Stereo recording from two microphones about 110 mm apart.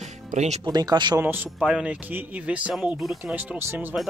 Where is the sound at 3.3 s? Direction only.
15° right (ahead or behind).